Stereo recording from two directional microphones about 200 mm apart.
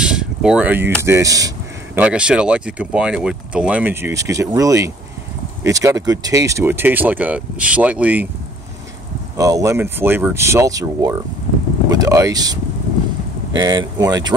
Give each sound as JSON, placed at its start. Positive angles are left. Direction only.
{"t": 0.0, "sound": "a sound", "side_deg": -5}
{"t": 1.0, "sound": "speech", "side_deg": -15}
{"t": 2.0, "sound": "speech", "side_deg": -5}
{"t": 9.4, "sound": "speech", "side_deg": -15}